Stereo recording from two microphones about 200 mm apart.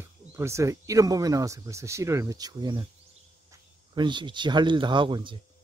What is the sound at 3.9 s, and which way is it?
Speech, 25° right (ahead or behind).